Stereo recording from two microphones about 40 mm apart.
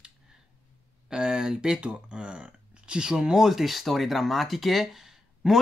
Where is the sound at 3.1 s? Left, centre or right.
Centre.